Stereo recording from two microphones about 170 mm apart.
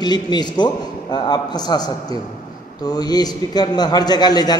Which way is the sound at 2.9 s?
25° left (ahead or behind).